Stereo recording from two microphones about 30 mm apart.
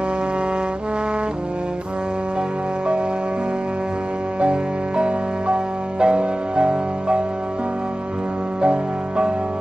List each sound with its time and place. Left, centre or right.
4.4 s music: right
8.5 s music: right